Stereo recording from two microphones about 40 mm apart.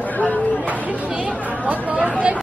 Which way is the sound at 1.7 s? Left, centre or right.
Right.